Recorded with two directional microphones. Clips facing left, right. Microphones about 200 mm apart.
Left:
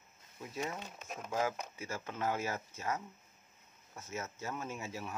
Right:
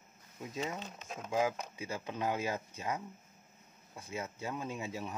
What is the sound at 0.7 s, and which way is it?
Speech, 10° left (ahead or behind).